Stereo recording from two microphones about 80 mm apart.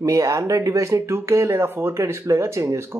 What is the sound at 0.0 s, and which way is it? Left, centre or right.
Speech, right.